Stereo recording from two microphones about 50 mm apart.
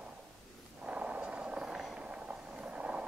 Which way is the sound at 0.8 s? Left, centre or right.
Right.